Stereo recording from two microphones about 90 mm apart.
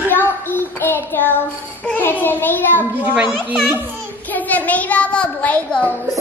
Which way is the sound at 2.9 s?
15° right (ahead or behind).